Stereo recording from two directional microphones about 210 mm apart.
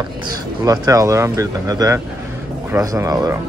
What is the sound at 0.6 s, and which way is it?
Speech, 15° right (ahead or behind).